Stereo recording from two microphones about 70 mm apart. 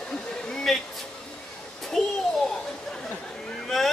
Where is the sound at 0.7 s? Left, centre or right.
Centre.